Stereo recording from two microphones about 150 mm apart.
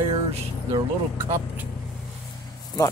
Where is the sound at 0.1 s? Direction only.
30° right (ahead or behind).